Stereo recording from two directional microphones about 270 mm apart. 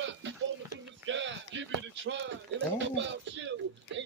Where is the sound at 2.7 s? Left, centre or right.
Right.